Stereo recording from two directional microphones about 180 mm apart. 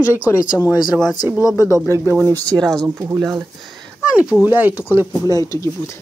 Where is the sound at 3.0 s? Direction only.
15° right (ahead or behind).